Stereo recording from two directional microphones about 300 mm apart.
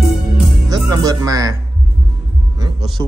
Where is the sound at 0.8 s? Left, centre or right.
Centre.